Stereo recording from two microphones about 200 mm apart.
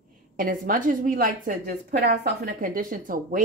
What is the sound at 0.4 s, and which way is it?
A woman's voice, 45° right (ahead or behind).